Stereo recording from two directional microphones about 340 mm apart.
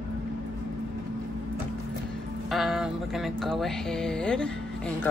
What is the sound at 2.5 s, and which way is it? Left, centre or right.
Mantra, centre.